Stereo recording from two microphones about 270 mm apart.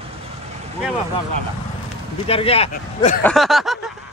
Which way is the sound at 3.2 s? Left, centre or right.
Centre.